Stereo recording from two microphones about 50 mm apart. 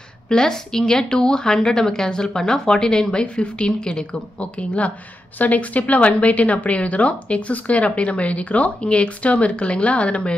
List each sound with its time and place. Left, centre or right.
0.3 s a woman's voice: centre